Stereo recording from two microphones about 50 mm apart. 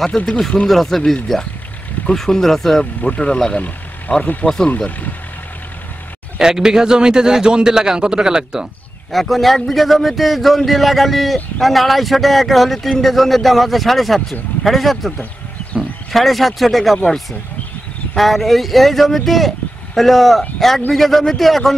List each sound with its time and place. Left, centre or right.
0.3 s a man's voice: centre
3.0 s speech: left
6.3 s a man's voice: centre
9.1 s a man's voice: centre